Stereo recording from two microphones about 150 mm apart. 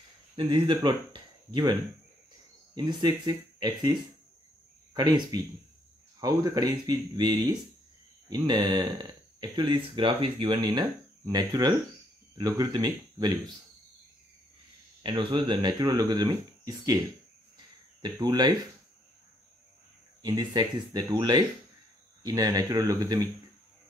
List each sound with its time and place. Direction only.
0.4 s speech: 30° right (ahead or behind)
4.9 s speech: 30° right (ahead or behind)
15.0 s speech: 35° right (ahead or behind)
18.0 s speech: 30° right (ahead or behind)
20.2 s speech: 25° right (ahead or behind)